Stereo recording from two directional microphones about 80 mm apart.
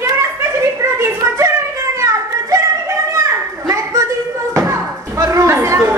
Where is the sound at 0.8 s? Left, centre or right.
Right.